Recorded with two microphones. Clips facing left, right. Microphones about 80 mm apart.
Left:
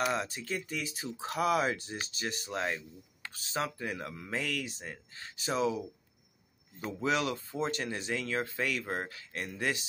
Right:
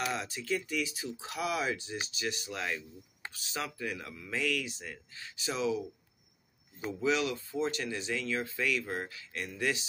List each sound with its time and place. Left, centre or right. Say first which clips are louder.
0.0 s speech: left 3 dB; left
7.0 s speech: even; left